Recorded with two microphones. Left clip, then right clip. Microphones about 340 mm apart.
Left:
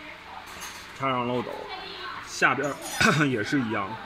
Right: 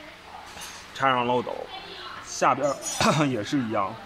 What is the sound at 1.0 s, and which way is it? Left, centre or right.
Speech, right.